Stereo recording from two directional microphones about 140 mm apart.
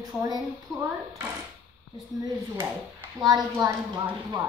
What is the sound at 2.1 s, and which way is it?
A woman's voice, 25° right (ahead or behind).